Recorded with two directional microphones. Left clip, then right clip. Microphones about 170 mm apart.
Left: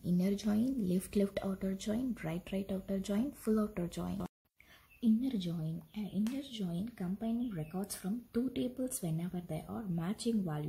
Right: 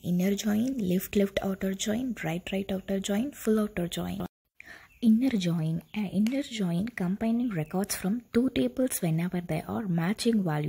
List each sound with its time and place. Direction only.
0.0 s speech: 20° right (ahead or behind)
5.0 s speech: 40° right (ahead or behind)